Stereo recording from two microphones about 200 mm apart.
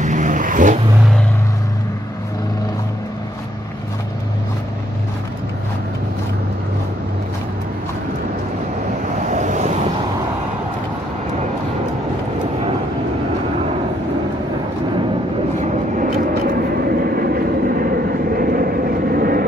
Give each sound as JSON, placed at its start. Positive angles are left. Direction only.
{"t": 0.0, "sound": "vehicle", "side_deg": -40}
{"t": 9.3, "sound": "vehicle", "side_deg": -35}
{"t": 15.6, "sound": "vehicle", "side_deg": -40}